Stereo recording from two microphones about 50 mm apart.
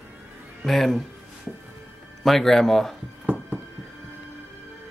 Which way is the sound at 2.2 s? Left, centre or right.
Centre.